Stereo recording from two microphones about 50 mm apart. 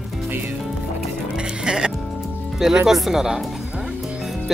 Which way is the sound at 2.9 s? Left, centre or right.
Centre.